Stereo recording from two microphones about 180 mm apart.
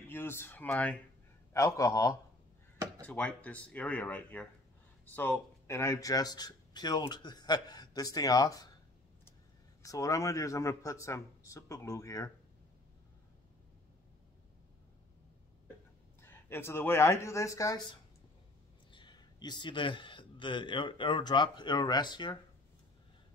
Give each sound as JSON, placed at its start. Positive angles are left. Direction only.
{"t": 0.1, "sound": "speech", "side_deg": 10}
{"t": 3.0, "sound": "speech", "side_deg": 5}
{"t": 9.8, "sound": "speech", "side_deg": 20}
{"t": 16.2, "sound": "speech", "side_deg": 15}
{"t": 18.9, "sound": "a man's voice", "side_deg": 25}